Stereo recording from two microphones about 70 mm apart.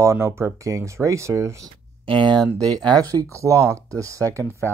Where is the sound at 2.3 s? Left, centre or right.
Right.